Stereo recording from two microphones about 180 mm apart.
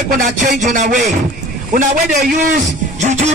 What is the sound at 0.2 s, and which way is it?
Speech, 45° right (ahead or behind).